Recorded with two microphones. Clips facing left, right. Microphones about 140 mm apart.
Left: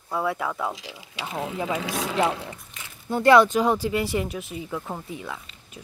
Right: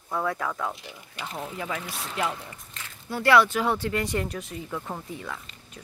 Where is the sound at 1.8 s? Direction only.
90° left.